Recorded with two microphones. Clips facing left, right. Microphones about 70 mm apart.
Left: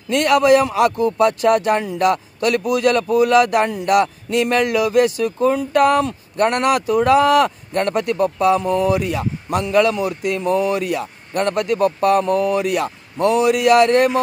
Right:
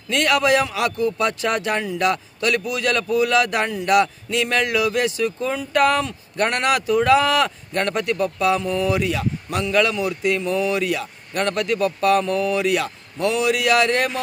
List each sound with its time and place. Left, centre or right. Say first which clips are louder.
0.1 s a man's voice: left 5 dB; left